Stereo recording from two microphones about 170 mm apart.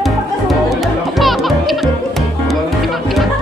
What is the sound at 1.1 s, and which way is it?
Music, centre (ahead or behind).